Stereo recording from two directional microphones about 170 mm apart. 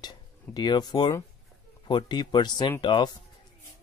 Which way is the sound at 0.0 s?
25° left (ahead or behind).